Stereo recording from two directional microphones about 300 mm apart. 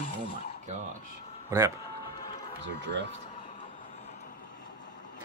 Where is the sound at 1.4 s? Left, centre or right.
Centre.